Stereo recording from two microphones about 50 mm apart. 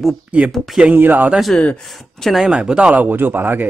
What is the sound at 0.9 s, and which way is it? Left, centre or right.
Speech, right.